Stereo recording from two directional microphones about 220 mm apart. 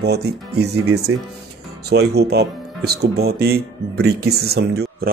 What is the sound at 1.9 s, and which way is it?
Speech, 45° right (ahead or behind).